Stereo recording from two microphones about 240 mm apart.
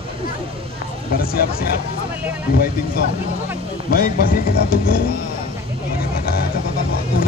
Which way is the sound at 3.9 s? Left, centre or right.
Left.